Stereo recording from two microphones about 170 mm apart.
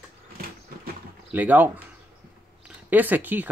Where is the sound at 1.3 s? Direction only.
10° right (ahead or behind).